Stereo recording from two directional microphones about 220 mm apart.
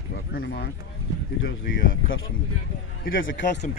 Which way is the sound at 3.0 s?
60° left (ahead or behind).